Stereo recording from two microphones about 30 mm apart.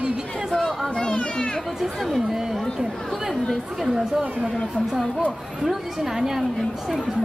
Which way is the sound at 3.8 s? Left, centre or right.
Centre.